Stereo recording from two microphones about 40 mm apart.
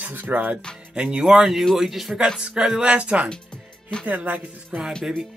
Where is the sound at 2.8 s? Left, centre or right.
Right.